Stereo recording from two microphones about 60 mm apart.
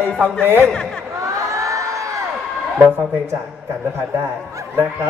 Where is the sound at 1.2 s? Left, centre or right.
Right.